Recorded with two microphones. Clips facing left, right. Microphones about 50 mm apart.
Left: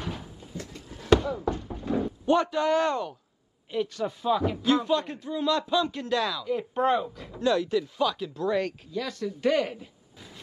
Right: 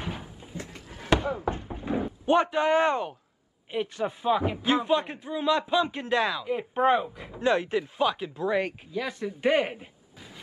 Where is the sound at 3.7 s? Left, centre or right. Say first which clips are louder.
Even; right.